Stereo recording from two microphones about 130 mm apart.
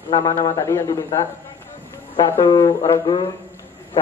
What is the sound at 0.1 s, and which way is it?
A man's voice, 25° left (ahead or behind).